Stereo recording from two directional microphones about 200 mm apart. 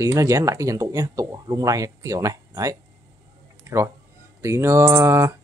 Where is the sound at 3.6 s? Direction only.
15° right (ahead or behind).